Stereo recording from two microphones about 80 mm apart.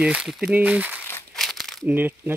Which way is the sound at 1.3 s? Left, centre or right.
Centre.